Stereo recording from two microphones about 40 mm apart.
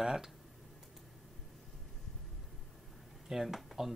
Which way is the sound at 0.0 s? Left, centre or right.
Centre.